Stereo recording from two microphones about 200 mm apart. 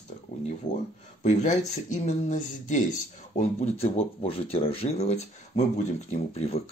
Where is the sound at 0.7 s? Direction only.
40° left (ahead or behind).